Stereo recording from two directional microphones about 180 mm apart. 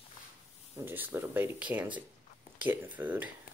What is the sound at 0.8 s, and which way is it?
Speech, 10° right (ahead or behind).